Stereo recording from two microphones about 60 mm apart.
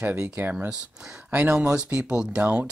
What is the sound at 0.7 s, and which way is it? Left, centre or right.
Speech, centre.